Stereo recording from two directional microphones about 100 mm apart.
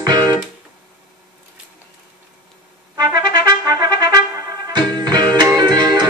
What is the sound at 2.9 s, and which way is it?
Trumpet, 40° right (ahead or behind).